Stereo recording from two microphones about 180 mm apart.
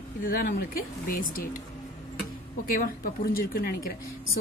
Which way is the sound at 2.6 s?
50° left (ahead or behind).